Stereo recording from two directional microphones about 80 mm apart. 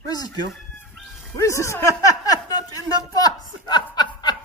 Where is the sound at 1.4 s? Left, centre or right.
Left.